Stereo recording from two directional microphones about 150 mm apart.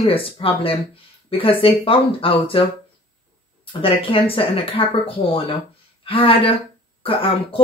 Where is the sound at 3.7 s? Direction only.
35° left (ahead or behind).